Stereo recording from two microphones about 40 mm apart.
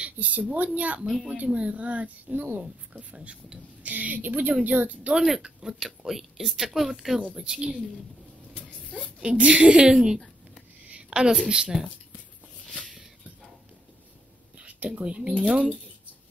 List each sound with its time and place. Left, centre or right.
0.2 s speech: right
1.0 s a woman's voice: centre
1.3 s speech: right
2.3 s a woman's voice: right
2.6 s speech: right
3.8 s a woman's voice: right
5.1 s speech: centre
9.2 s a woman's voice: right
11.1 s a woman's voice: centre
14.6 s a sound: right
15.0 s speech: right
15.3 s speech: centre